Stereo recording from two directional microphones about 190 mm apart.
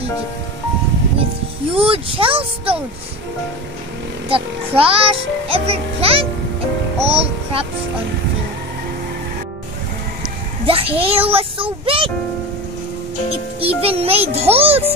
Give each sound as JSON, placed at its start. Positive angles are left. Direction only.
{"t": 1.7, "sound": "a child's voice", "side_deg": -30}
{"t": 4.3, "sound": "a child's voice", "side_deg": -30}
{"t": 10.6, "sound": "a child's voice", "side_deg": -30}
{"t": 13.7, "sound": "a child's voice", "side_deg": -30}